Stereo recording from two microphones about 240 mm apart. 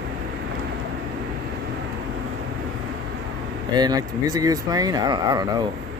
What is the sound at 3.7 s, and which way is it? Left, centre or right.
Speech, centre.